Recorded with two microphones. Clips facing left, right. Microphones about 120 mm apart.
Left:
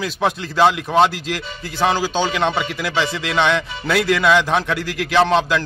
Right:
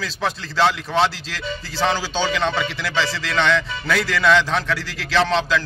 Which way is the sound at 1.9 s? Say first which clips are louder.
Left 4 dB; 50° left (ahead or behind).